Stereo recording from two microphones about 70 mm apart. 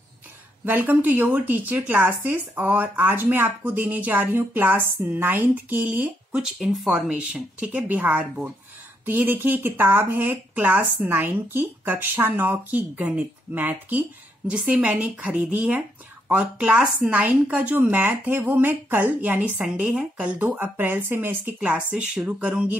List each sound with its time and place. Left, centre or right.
0.7 s speech: right
6.3 s speech: centre
7.1 s speech: centre; by 21.5 s right
21.5 s speech: centre